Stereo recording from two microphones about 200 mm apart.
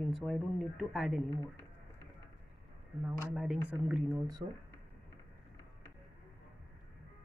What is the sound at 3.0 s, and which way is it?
Speech, 5° right (ahead or behind).